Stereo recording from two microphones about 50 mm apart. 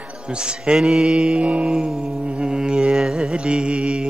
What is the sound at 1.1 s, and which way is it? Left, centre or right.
Mantra, right.